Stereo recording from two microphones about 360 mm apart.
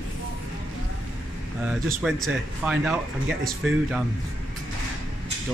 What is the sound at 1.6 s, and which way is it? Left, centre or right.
Speech, centre.